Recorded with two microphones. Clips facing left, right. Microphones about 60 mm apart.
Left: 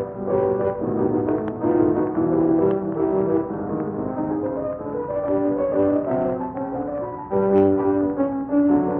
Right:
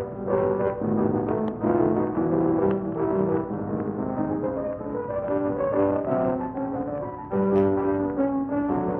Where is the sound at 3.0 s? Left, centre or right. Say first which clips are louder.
Left 3 dB; left.